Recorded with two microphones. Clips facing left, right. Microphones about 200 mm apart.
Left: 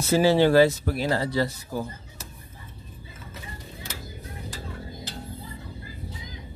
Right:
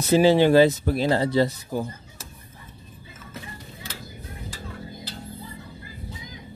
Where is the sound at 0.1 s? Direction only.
20° right (ahead or behind).